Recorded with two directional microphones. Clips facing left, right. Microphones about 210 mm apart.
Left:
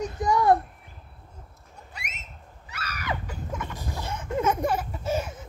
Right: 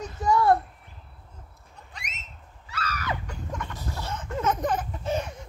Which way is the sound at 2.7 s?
15° left (ahead or behind).